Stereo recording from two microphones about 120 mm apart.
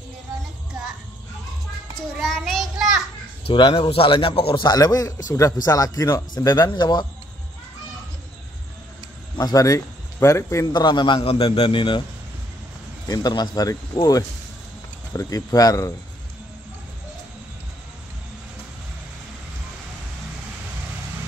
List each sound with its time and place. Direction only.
2.1 s child singing: centre (ahead or behind)
3.4 s a man's voice: 45° left (ahead or behind)
4.6 s speech: 30° left (ahead or behind)
9.4 s speech: 30° left (ahead or behind)
10.7 s a man's voice: 35° left (ahead or behind)
13.1 s speech: 35° left (ahead or behind)